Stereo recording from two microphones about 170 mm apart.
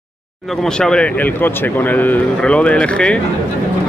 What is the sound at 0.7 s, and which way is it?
Speech, 5° left (ahead or behind).